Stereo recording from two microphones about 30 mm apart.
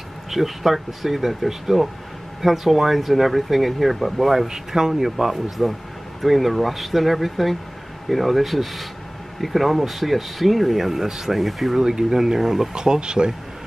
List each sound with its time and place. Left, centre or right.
0.3 s speech: centre
4.5 s speech: centre
11.8 s speech: centre
12.7 s speech: right